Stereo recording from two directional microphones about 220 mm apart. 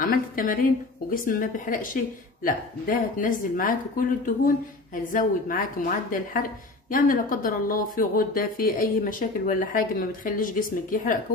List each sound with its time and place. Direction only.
0.0 s a woman's voice: 40° left (ahead or behind)